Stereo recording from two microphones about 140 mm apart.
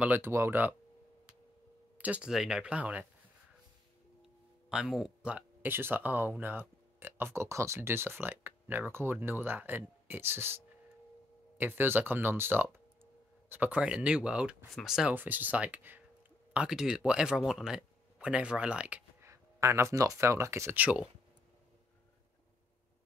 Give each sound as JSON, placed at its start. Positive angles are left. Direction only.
{"t": 0.0, "sound": "speech", "side_deg": -15}
{"t": 2.0, "sound": "speech", "side_deg": -10}
{"t": 4.2, "sound": "speech", "side_deg": -5}
{"t": 19.3, "sound": "speech", "side_deg": -20}